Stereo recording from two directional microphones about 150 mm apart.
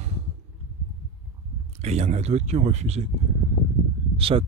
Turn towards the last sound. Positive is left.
turn(degrees=-40)  # may be behind; listen again after turning